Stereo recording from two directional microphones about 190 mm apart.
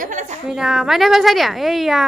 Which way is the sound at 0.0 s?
40° right (ahead or behind).